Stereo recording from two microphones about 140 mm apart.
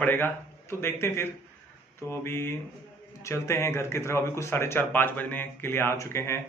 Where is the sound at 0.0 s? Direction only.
15° left (ahead or behind).